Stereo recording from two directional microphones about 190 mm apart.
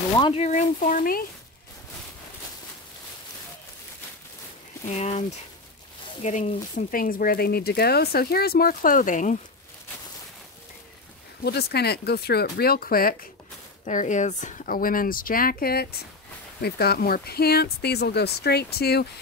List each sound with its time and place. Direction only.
0.2 s speech: 40° left (ahead or behind)
4.8 s speech: 35° left (ahead or behind)
6.2 s speech: 40° left (ahead or behind)
11.4 s speech: 55° left (ahead or behind)
13.8 s speech: 40° left (ahead or behind); by 19.0 s 60° left (ahead or behind)